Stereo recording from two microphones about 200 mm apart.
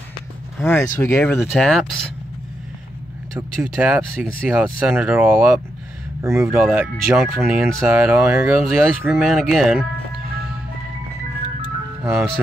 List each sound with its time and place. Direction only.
0.6 s speech: 5° left (ahead or behind)
1.4 s speech: centre (ahead or behind)
3.7 s speech: 5° right (ahead or behind)
12.0 s speech: centre (ahead or behind)